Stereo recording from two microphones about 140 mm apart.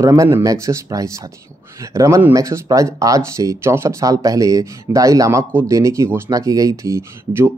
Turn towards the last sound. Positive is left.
turn(degrees=-20)  # may be behind; listen again after turning